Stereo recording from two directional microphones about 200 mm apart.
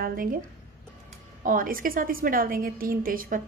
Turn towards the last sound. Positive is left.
turn(degrees=-45)  # may be behind; listen again after turning